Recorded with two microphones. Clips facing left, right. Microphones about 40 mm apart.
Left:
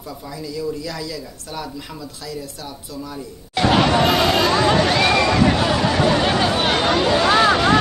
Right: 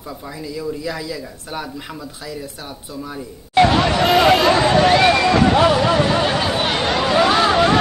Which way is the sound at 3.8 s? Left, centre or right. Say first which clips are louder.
Right 1 dB; centre.